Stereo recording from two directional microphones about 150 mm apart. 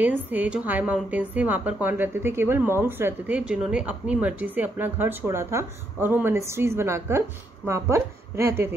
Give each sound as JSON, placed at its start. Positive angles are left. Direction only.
{"t": 0.0, "sound": "speech", "side_deg": -10}